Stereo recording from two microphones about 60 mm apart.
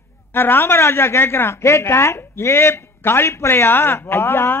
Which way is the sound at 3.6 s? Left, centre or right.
Left.